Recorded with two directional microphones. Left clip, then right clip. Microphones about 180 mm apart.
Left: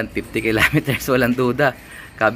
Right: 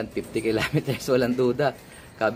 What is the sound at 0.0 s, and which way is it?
Speech, 5° left (ahead or behind).